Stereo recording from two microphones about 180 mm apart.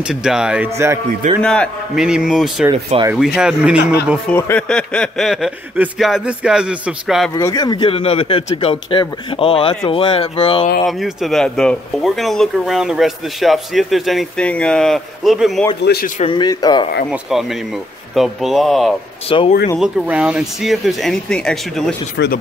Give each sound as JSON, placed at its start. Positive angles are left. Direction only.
{"t": 0.0, "sound": "speech", "side_deg": -5}
{"t": 1.4, "sound": "speech", "side_deg": 5}
{"t": 2.9, "sound": "speech", "side_deg": -40}
{"t": 3.3, "sound": "speech", "side_deg": -5}
{"t": 4.3, "sound": "speech", "side_deg": 10}
{"t": 7.3, "sound": "speech", "side_deg": 20}
{"t": 10.9, "sound": "speech", "side_deg": 0}
{"t": 15.8, "sound": "a man's voice", "side_deg": 60}
{"t": 16.2, "sound": "speech", "side_deg": 25}
{"t": 17.1, "sound": "speech", "side_deg": 0}
{"t": 19.2, "sound": "speech", "side_deg": 30}
{"t": 19.8, "sound": "speech", "side_deg": -5}
{"t": 22.1, "sound": "a man's voice", "side_deg": 65}